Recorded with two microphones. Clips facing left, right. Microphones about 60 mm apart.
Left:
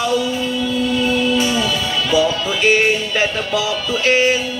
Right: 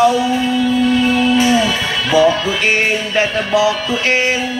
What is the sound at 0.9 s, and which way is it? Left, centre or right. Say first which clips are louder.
Music: right 4 dB; right.